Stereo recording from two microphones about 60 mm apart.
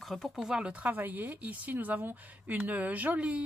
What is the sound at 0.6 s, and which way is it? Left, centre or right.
A woman's voice, right.